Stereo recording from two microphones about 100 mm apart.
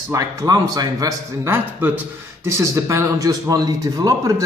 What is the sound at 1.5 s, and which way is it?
A man's voice, 20° right (ahead or behind).